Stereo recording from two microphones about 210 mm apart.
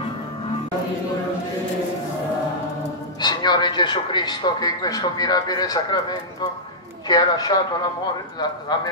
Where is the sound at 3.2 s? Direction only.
20° left (ahead or behind).